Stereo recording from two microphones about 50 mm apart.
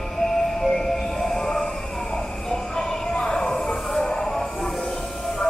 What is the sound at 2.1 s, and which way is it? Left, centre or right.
Train, centre.